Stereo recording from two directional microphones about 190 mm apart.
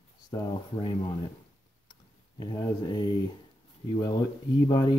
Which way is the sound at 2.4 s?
25° left (ahead or behind).